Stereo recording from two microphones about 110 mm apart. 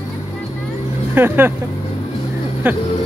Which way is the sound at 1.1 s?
20° right (ahead or behind).